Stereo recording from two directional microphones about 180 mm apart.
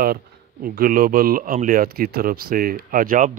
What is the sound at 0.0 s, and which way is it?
Speech, 55° right (ahead or behind).